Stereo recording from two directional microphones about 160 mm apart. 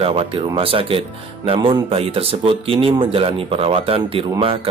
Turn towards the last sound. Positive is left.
turn(degrees=-35)  # may be behind; listen again after turning